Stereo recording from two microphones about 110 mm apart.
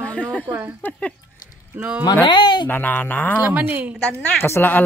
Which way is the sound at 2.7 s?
15° left (ahead or behind).